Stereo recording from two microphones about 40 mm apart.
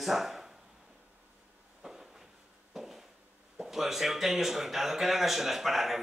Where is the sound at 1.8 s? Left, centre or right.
Centre.